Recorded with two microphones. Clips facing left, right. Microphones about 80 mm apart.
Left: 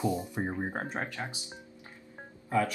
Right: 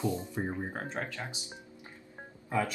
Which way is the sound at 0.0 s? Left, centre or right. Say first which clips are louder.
Left 2 dB; centre.